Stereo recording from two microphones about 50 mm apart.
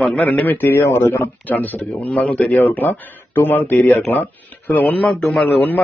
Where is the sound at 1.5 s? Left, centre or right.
Left.